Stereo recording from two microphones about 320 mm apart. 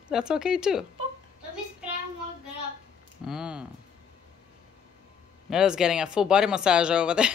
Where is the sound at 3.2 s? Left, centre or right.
Centre.